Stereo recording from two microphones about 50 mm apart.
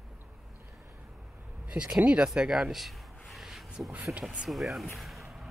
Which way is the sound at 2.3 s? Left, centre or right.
Centre.